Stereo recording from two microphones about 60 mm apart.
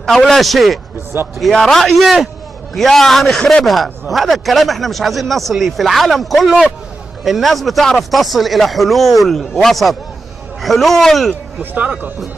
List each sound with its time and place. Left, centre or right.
0.0 s speech: centre
11.7 s speech: right